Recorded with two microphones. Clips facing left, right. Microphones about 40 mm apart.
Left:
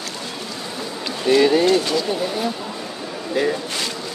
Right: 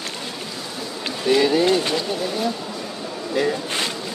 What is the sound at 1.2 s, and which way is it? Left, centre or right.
Speech, centre.